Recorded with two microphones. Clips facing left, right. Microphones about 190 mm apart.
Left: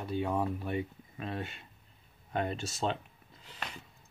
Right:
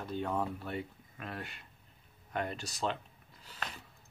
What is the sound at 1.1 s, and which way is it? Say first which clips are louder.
Speech: left 5 dB; 25° left (ahead or behind).